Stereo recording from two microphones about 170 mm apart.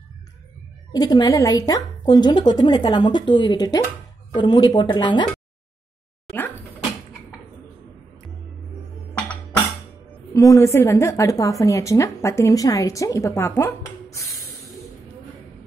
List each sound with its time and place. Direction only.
0.9 s a woman's voice: 25° left (ahead or behind)
10.3 s a woman's voice: 20° left (ahead or behind)